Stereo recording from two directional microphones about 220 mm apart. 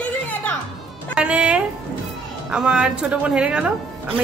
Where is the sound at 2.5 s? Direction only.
5° right (ahead or behind).